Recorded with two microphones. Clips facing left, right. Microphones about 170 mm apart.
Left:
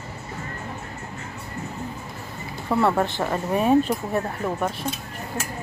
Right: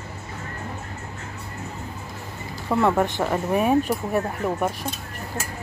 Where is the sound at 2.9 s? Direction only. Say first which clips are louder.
Right 1 dB; 15° right (ahead or behind).